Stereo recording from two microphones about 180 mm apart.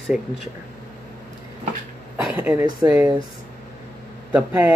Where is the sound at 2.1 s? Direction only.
5° right (ahead or behind).